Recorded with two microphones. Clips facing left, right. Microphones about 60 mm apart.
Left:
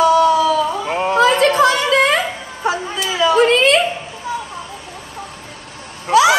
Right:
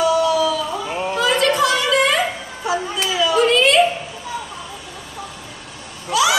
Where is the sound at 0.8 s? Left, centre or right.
Left.